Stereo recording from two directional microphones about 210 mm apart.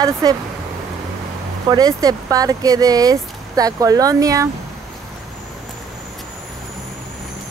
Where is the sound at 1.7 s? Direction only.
15° right (ahead or behind).